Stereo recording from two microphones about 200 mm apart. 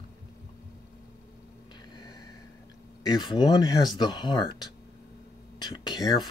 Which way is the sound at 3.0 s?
20° left (ahead or behind).